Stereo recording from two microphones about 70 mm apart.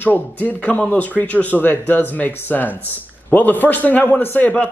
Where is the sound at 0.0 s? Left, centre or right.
Left.